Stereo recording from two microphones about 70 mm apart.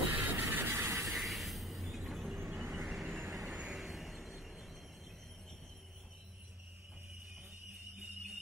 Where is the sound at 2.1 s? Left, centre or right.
Centre.